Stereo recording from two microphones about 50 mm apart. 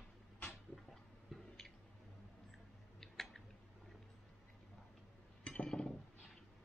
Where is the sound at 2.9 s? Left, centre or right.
Centre.